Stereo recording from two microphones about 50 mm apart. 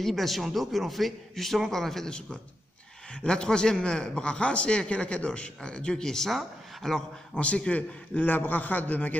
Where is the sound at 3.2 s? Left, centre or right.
Centre.